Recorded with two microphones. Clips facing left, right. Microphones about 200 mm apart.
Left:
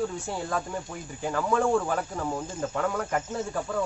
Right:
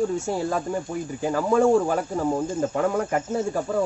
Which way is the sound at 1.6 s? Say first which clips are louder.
Right 6 dB; 25° right (ahead or behind).